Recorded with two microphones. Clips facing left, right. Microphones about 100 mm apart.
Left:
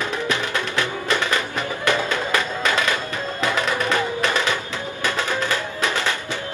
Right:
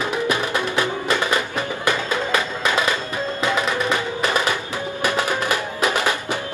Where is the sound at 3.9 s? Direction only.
15° right (ahead or behind).